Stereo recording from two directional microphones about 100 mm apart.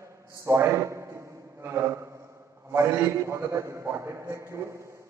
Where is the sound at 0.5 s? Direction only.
30° right (ahead or behind).